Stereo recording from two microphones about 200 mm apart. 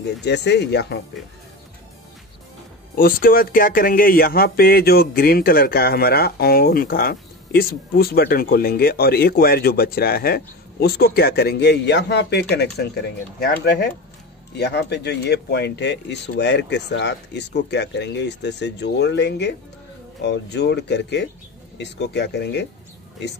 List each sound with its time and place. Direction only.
0.2 s speech: 60° left (ahead or behind)
3.0 s speech: 45° left (ahead or behind)
13.7 s speech: 55° left (ahead or behind)